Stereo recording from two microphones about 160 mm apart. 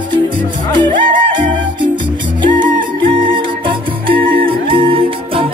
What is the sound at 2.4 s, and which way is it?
Music, 30° right (ahead or behind).